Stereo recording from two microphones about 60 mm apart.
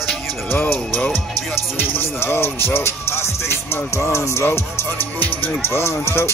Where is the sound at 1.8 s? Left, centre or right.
Left.